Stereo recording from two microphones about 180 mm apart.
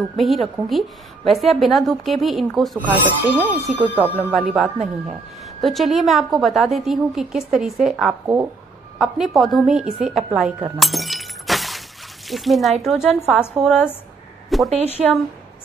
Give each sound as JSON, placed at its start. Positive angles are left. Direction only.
{"t": 0.2, "sound": "a woman's voice", "side_deg": 0}
{"t": 9.9, "sound": "shatter", "side_deg": -5}
{"t": 12.3, "sound": "a woman's voice", "side_deg": 0}